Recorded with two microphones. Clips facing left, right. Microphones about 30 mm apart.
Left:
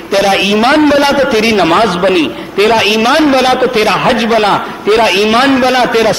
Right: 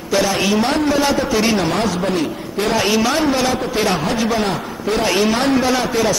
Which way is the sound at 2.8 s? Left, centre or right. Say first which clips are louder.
Left 7 dB; left.